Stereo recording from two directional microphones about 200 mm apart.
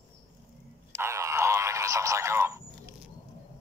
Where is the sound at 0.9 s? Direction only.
15° right (ahead or behind).